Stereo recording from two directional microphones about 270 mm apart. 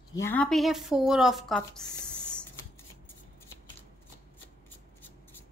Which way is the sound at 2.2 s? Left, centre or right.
Centre.